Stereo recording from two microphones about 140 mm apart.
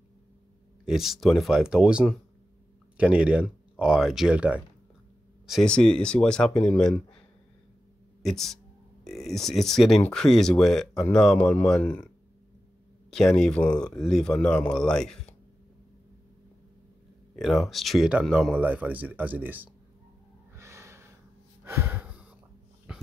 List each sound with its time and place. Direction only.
0.8 s speech: centre (ahead or behind)
5.5 s speech: 5° left (ahead or behind)
8.2 s speech: centre (ahead or behind)
13.1 s speech: 5° left (ahead or behind)
17.4 s speech: centre (ahead or behind)
20.5 s gasp: 20° right (ahead or behind)
22.9 s dog: 5° right (ahead or behind)